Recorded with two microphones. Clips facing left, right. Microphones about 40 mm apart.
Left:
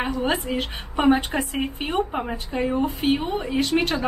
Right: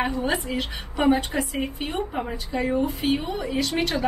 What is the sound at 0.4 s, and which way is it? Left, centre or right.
A woman's voice, left.